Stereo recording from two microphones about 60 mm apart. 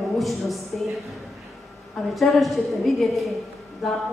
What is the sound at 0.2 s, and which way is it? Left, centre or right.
Speech, centre.